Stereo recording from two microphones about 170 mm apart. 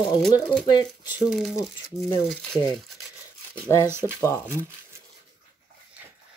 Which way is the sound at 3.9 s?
15° right (ahead or behind).